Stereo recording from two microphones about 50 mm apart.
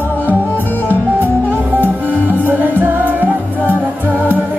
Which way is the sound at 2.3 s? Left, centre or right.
Right.